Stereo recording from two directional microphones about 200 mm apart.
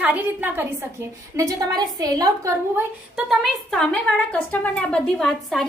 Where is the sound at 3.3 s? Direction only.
Centre (ahead or behind).